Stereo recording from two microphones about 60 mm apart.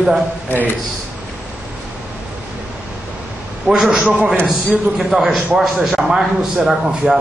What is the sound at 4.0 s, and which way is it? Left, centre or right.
Speech, centre.